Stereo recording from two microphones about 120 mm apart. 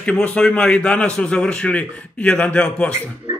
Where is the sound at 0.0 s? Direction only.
10° left (ahead or behind).